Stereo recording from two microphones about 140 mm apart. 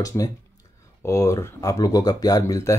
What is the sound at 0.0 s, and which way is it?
Speech, 25° left (ahead or behind).